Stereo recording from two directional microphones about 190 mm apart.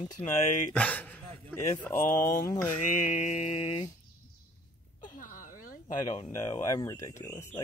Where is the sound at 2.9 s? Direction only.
40° left (ahead or behind).